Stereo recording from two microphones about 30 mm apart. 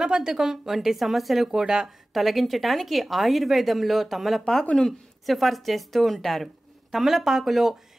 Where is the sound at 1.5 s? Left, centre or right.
Centre.